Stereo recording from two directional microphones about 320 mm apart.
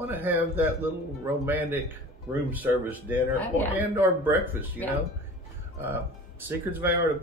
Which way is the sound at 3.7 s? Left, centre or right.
Centre.